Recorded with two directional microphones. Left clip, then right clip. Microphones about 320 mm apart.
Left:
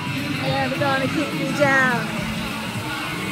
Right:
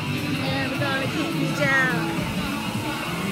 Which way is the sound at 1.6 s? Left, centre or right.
Centre.